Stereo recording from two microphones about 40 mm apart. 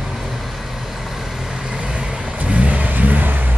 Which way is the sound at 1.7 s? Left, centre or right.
Right.